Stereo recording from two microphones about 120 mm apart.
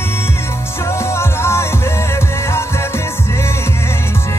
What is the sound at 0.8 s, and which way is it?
Music, 20° left (ahead or behind).